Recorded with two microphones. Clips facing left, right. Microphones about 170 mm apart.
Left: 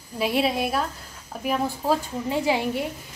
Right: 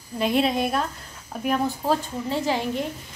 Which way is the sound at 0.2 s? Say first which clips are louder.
Right 1 dB; 5° left (ahead or behind).